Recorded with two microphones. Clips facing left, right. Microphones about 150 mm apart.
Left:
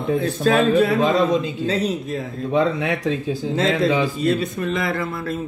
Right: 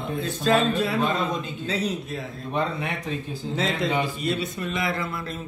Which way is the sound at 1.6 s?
40° left (ahead or behind).